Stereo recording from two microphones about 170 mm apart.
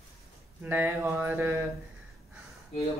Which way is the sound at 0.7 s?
10° right (ahead or behind).